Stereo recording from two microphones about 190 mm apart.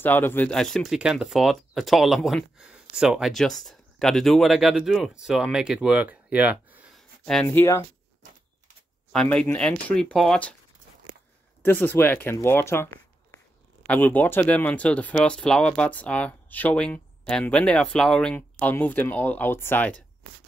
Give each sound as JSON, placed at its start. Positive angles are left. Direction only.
{"t": 0.0, "sound": "speech", "side_deg": 10}
{"t": 7.4, "sound": "speech", "side_deg": 15}
{"t": 9.1, "sound": "speech", "side_deg": 5}
{"t": 11.6, "sound": "speech", "side_deg": 10}